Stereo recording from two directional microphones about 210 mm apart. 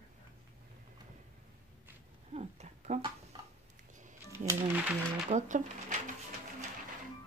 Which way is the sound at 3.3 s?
20° right (ahead or behind).